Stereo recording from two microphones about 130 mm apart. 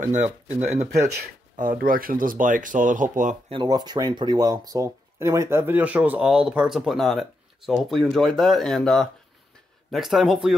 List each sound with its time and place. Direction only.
0.0 s speech: 65° right (ahead or behind)
1.6 s speech: 90° right
3.6 s speech: 30° right (ahead or behind); by 10.5 s 5° right (ahead or behind)